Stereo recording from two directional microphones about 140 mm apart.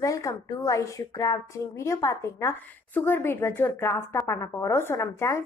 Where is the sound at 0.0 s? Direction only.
25° left (ahead or behind).